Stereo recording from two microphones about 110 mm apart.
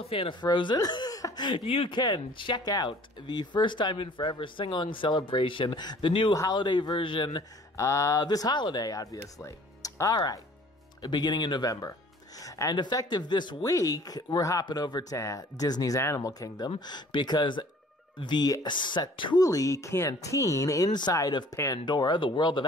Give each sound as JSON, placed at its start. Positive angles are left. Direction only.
{"t": 0.0, "sound": "speech", "side_deg": 60}
{"t": 0.4, "sound": "speech", "side_deg": 45}
{"t": 1.6, "sound": "speech", "side_deg": 60}
{"t": 2.0, "sound": "speech", "side_deg": 45}
{"t": 2.6, "sound": "speech", "side_deg": 35}
{"t": 7.7, "sound": "speech", "side_deg": 25}
{"t": 10.1, "sound": "speech", "side_deg": 40}
{"t": 19.4, "sound": "speech", "side_deg": 30}